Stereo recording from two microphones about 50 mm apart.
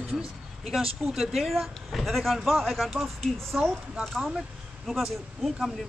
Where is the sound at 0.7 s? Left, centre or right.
Centre.